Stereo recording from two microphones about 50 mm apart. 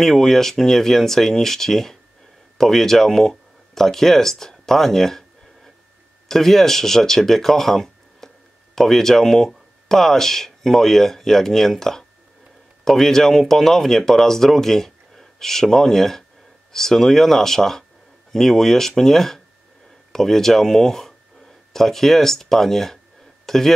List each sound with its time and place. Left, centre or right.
0.0 s speech: centre
6.2 s speech: centre